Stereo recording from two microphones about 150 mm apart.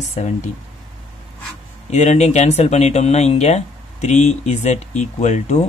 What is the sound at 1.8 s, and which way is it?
Speech, 50° left (ahead or behind).